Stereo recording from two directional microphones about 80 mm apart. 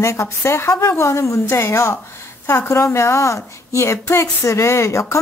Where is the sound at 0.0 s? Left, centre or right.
Left.